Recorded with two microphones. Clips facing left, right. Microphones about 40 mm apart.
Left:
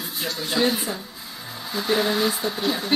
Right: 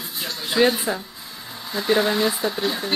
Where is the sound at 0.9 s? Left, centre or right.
Right.